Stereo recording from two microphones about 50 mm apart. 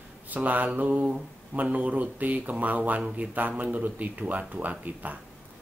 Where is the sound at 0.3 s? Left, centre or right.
Right.